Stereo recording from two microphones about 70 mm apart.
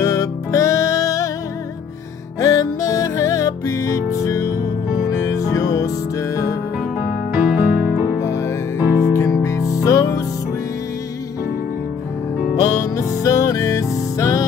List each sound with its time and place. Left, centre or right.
0.0 s music: left
2.4 s music: left
7.3 s music: centre
8.2 s music: left
8.8 s music: right
9.1 s music: left
12.9 s music: left